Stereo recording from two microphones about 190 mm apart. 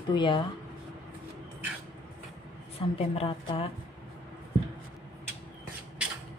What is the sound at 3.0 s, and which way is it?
Speech, 30° left (ahead or behind).